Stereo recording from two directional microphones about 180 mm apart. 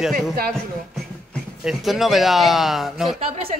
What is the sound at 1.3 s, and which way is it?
A man's voice, centre (ahead or behind).